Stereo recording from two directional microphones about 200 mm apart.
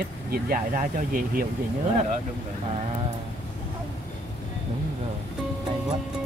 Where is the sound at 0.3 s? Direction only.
45° right (ahead or behind).